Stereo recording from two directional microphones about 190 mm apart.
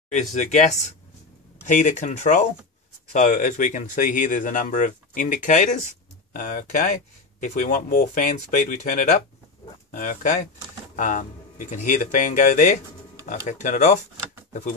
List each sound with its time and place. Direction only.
0.1 s speech: 40° left (ahead or behind)